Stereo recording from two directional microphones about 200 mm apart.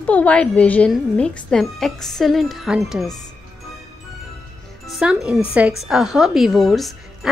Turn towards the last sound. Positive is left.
turn(degrees=0)  # may be behind; listen again after turning